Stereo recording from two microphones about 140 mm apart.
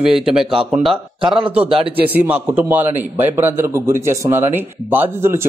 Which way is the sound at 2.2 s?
10° right (ahead or behind).